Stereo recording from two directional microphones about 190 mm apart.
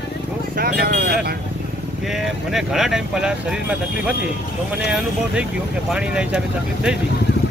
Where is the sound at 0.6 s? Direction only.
55° right (ahead or behind).